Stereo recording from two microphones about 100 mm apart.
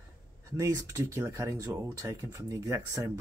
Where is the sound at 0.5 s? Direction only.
30° right (ahead or behind).